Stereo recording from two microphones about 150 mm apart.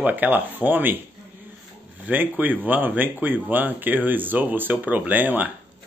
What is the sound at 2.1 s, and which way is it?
Speech, 10° right (ahead or behind).